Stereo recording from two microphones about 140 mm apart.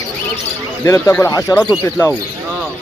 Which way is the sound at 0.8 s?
20° left (ahead or behind).